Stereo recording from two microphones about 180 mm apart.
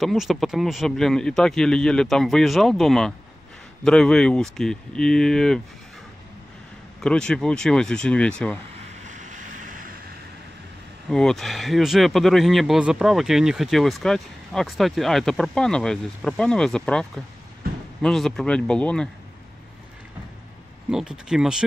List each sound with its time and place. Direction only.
0.0 s speech: centre (ahead or behind)
7.0 s speech: 5° left (ahead or behind)
9.0 s vehicle: 45° right (ahead or behind)
11.1 s speech: 5° left (ahead or behind)
20.9 s speech: 5° right (ahead or behind)